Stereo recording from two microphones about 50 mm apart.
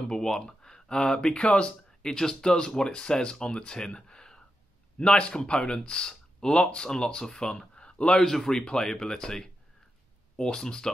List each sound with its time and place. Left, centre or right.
0.1 s speech: centre
8.2 s speech: centre